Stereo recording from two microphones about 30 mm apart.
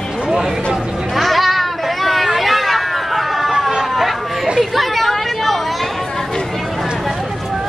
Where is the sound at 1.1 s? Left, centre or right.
Centre.